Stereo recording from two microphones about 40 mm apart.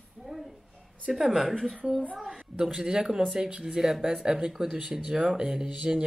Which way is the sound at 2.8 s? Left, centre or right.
Centre.